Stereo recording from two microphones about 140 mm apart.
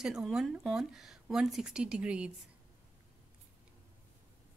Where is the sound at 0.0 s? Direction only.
5° right (ahead or behind).